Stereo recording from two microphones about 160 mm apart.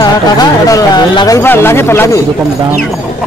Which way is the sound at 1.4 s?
15° left (ahead or behind).